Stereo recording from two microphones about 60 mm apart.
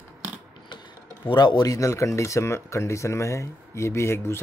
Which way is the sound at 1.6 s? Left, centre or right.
Left.